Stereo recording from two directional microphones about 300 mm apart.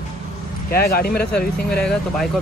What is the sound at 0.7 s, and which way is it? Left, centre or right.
Speech, left.